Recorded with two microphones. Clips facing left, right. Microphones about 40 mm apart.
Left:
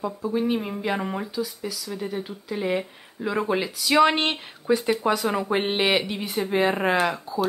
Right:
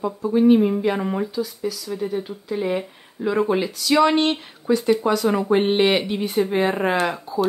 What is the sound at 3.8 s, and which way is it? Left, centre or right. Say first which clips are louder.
Speech: right 2 dB; centre.